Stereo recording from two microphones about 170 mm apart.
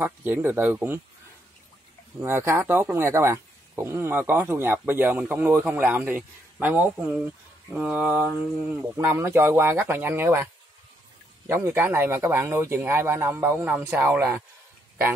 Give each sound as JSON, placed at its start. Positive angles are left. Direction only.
{"t": 0.0, "sound": "speech", "side_deg": -10}
{"t": 2.1, "sound": "speech", "side_deg": -15}